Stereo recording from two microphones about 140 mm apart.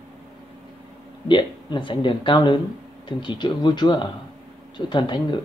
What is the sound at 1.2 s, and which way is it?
Speech, 35° left (ahead or behind).